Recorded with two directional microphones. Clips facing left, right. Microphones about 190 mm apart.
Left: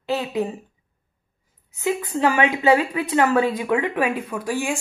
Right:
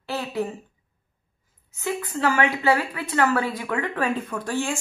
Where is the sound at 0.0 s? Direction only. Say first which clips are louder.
Left 4 dB; 20° left (ahead or behind).